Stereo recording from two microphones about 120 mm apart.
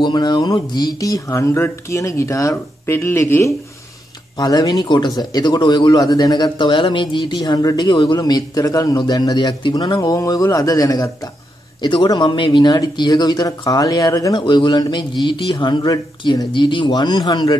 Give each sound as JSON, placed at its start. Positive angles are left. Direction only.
{"t": 0.0, "sound": "speech", "side_deg": 35}
{"t": 9.9, "sound": "speech", "side_deg": 30}
{"t": 14.4, "sound": "speech", "side_deg": 40}